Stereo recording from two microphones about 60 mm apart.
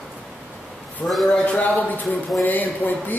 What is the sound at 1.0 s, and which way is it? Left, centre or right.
Speech, centre.